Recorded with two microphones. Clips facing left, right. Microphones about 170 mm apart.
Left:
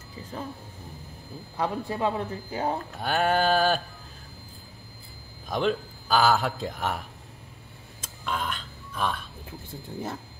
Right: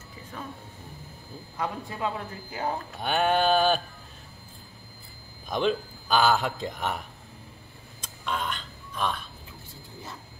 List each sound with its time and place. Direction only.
1.6 s speech: 35° left (ahead or behind)
2.9 s a man's voice: centre (ahead or behind)
5.5 s a man's voice: centre (ahead or behind)
8.0 s burping: centre (ahead or behind)